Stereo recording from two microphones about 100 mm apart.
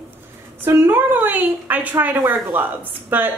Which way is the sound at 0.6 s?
20° right (ahead or behind).